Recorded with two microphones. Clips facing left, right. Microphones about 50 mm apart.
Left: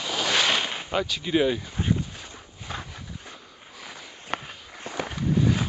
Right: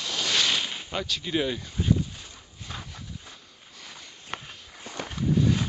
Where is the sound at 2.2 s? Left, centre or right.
Centre.